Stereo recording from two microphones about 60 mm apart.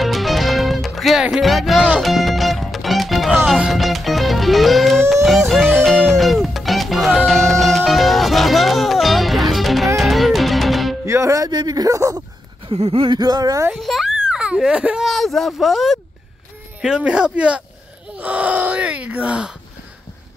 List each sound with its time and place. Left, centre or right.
0.0 s music: centre
1.3 s speech: centre
2.0 s music: centre
11.1 s a sound: right
13.2 s speech: right
13.7 s a child's voice: centre
14.3 s speech: centre
15.0 s speech: centre
16.8 s speech: centre